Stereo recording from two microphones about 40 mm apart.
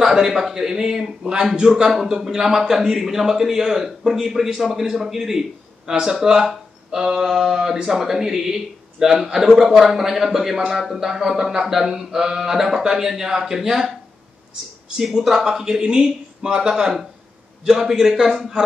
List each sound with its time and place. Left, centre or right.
0.0 s a man's voice: centre
15.0 s a man's voice: centre